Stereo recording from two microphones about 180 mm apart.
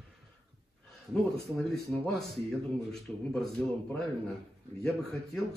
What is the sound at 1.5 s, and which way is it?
Speech, 5° left (ahead or behind).